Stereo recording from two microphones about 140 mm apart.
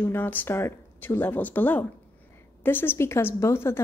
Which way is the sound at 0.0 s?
15° left (ahead or behind).